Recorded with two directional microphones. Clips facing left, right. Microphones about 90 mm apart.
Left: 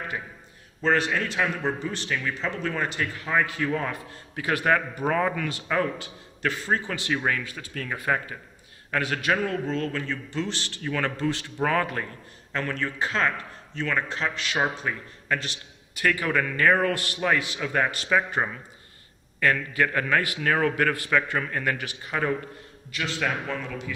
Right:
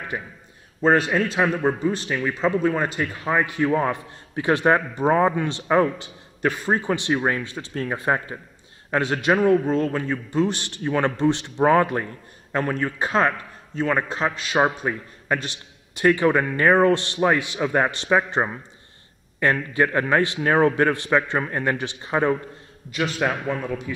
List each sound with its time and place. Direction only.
0.1 s a man's voice: 30° right (ahead or behind)